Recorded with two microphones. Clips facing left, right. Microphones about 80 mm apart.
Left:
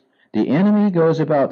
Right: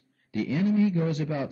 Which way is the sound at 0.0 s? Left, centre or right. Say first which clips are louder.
Left 12 dB; left.